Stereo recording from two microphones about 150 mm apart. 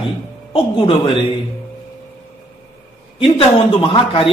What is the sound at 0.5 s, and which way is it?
Speech, 35° left (ahead or behind).